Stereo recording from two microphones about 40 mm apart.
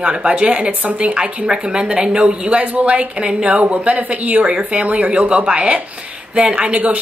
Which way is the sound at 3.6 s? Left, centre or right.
Right.